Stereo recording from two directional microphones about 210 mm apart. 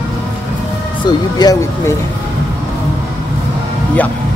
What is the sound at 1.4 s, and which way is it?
Speech, 15° left (ahead or behind).